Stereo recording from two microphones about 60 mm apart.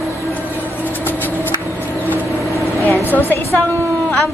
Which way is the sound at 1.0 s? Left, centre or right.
Left.